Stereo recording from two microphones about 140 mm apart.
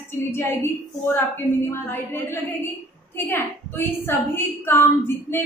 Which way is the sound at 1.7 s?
15° left (ahead or behind).